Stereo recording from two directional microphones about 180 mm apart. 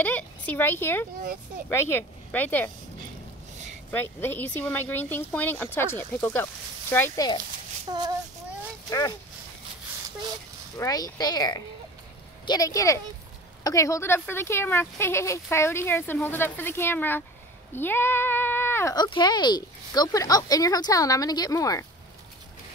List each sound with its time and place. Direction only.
0.0 s speech: 10° left (ahead or behind)
3.9 s speech: 10° left (ahead or behind)
7.9 s child singing: 25° right (ahead or behind)
10.8 s speech: 20° left (ahead or behind)
19.0 s speech: 25° left (ahead or behind)